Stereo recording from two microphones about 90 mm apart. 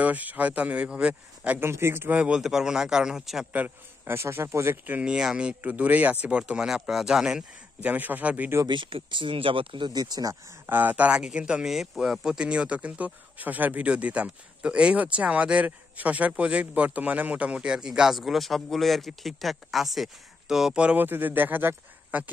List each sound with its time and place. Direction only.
0.0 s speech: 20° right (ahead or behind)
1.6 s speech: 30° right (ahead or behind)
2.1 s speech: 10° right (ahead or behind)
3.5 s speech: 20° right (ahead or behind)
5.1 s speech: 10° right (ahead or behind)
7.9 s speech: 20° right (ahead or behind)
8.6 s speech: 65° right (ahead or behind); by 10.3 s 45° right (ahead or behind)
10.7 s speech: 20° right (ahead or behind)